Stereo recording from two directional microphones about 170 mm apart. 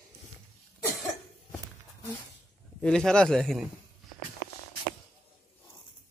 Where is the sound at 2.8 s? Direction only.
5° left (ahead or behind).